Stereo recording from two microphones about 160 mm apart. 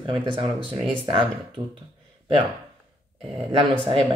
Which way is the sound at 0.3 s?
30° right (ahead or behind).